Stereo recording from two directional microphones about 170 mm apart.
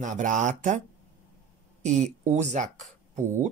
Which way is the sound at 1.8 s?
45° right (ahead or behind).